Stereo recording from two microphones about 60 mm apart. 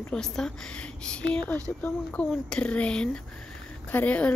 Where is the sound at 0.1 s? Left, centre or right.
Centre.